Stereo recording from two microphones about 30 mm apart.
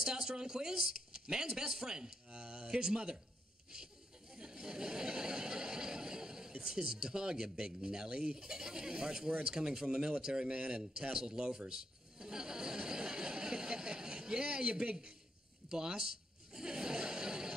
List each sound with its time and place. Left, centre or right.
0.0 s a man's voice: right
2.3 s speech: right
2.7 s a man's voice: right
3.7 s a sound: right
6.6 s a man's voice: right
8.4 s a man's voice: right
10.4 s speech: right
10.7 s a man's voice: right
15.7 s a sound: right